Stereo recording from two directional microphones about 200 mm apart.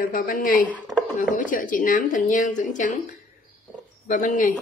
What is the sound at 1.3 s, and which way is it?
Speech, 40° left (ahead or behind).